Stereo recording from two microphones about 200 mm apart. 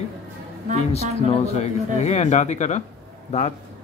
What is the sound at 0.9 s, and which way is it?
Speech, 30° left (ahead or behind).